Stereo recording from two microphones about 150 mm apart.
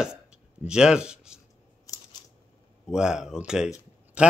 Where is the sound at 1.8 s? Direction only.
25° left (ahead or behind).